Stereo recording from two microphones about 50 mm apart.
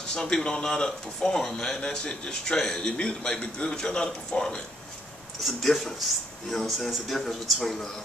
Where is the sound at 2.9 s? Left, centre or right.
Centre.